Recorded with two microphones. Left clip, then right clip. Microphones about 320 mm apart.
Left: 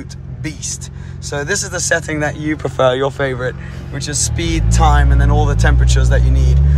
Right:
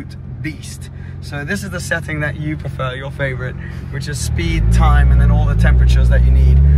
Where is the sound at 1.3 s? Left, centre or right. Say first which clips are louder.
Left 5 dB; centre.